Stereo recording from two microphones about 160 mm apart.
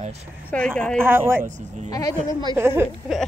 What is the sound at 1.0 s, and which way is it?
Speech, 15° right (ahead or behind).